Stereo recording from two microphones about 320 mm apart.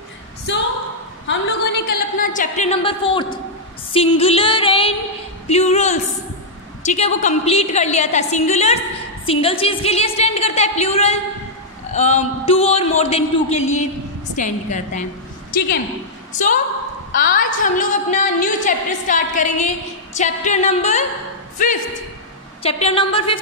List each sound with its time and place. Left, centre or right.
0.5 s a sound: left
1.2 s a woman's voice: left; by 3.3 s centre
3.9 s music: centre
5.5 s a woman's voice: left
17.1 s a woman's voice: left
22.6 s music: centre